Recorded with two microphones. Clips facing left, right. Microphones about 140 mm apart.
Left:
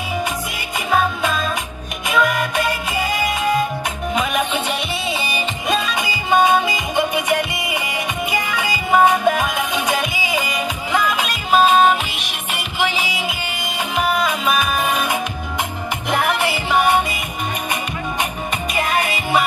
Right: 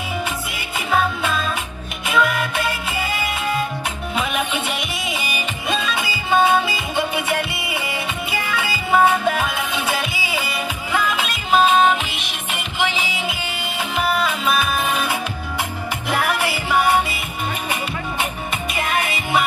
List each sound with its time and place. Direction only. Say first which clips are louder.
2.0 s music: left 1 dB; 15° left (ahead or behind)
4.6 s music: left 3 dB; 35° left (ahead or behind)
5.7 s music: left 2 dB; 15° left (ahead or behind)
18.8 s music: left 3 dB; 40° left (ahead or behind)